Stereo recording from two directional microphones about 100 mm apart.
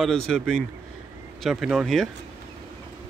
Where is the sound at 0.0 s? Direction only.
5° left (ahead or behind).